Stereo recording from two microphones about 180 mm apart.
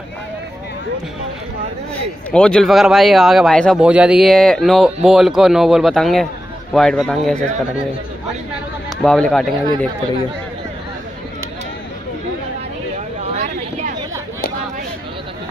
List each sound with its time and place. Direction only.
2.3 s speech: 5° left (ahead or behind)
9.0 s speech: 5° left (ahead or behind)
13.3 s a sound: 40° right (ahead or behind)